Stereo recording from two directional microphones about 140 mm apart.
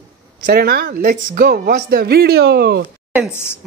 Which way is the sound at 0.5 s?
90° right.